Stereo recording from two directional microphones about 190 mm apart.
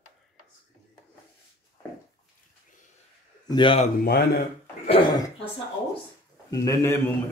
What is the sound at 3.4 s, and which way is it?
Speech, 25° left (ahead or behind).